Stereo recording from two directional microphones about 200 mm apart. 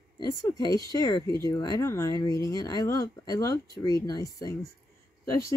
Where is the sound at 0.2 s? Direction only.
20° left (ahead or behind).